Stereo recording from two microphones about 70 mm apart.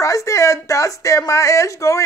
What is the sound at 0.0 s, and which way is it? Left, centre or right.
A man's voice, left.